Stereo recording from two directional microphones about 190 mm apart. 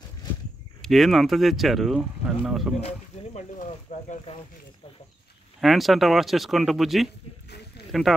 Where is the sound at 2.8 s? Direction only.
35° left (ahead or behind).